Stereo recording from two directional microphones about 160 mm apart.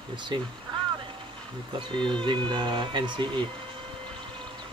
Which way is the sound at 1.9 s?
30° right (ahead or behind).